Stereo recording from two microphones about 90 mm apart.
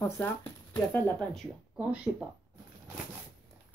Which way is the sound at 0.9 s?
20° left (ahead or behind).